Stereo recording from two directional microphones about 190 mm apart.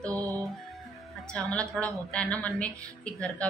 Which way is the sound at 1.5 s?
5° left (ahead or behind).